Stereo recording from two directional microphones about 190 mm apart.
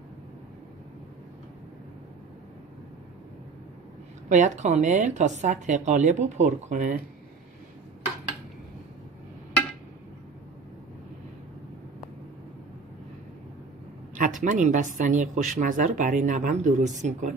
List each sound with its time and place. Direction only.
4.3 s a woman's voice: 40° right (ahead or behind)
14.1 s a woman's voice: 45° right (ahead or behind)